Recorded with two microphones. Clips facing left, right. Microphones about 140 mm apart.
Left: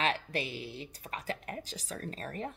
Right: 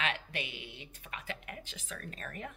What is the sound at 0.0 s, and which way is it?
Speech, 35° left (ahead or behind).